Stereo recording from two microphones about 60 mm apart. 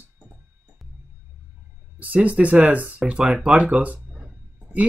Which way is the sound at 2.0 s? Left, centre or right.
Right.